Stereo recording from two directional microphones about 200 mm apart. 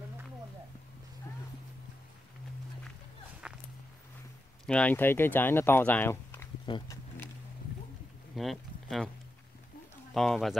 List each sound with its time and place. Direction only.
3.4 s walk: 5° right (ahead or behind)
4.6 s speech: 5° left (ahead or behind)
6.6 s speech: 25° left (ahead or behind)
8.4 s speech: centre (ahead or behind)
10.1 s speech: centre (ahead or behind)